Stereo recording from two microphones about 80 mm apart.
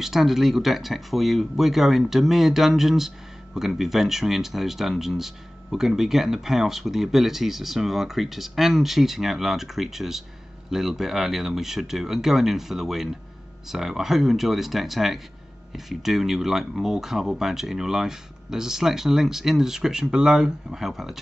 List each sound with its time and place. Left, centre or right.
0.0 s speech: centre